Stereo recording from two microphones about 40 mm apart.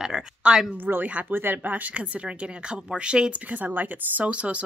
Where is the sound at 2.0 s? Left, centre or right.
Right.